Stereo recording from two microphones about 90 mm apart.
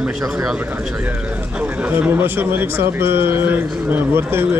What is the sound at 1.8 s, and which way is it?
A man's voice, 20° right (ahead or behind).